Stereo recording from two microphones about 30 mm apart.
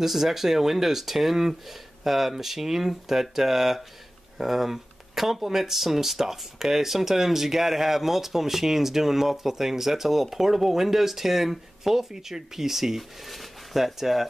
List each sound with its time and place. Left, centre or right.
0.0 s speech: centre